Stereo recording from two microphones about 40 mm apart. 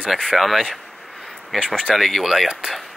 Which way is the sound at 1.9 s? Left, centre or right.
Centre.